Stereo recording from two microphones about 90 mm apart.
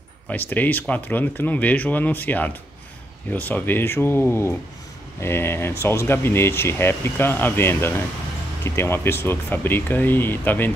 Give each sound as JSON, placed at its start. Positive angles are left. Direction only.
{"t": 0.3, "sound": "speech", "side_deg": 20}